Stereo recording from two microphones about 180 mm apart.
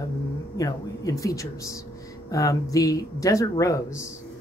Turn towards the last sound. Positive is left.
turn(degrees=20)  # may be behind; listen again after turning